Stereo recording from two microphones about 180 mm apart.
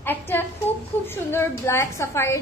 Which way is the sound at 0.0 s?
10° left (ahead or behind).